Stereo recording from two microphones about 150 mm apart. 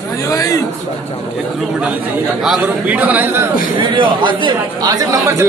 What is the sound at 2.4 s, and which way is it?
Speech, 5° right (ahead or behind).